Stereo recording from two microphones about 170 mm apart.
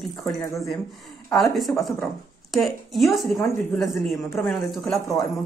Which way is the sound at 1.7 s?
5° left (ahead or behind).